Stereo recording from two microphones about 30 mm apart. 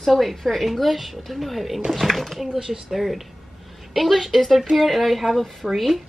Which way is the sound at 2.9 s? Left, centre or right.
Centre.